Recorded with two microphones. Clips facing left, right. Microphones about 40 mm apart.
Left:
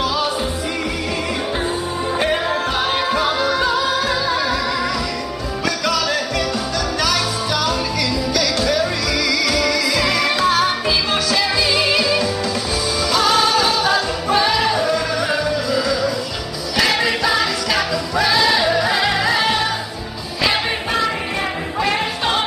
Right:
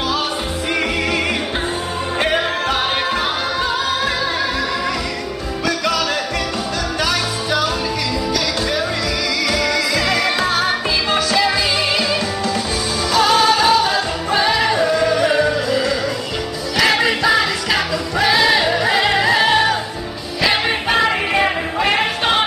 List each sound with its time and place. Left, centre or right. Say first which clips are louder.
2.3 s music: right 1 dB; right
2.9 s music: left 1 dB; right
7.1 s music: even; centre
9.9 s music: even; centre
13.1 s music: right 2 dB; centre
14.7 s yodeling: right 3 dB; right
16.8 s music: right 3 dB; right
20.9 s music: right 5 dB; right